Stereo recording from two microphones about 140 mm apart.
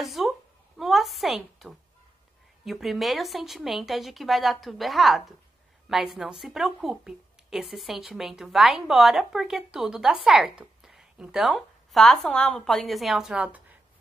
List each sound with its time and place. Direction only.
0.0 s a woman's voice: centre (ahead or behind)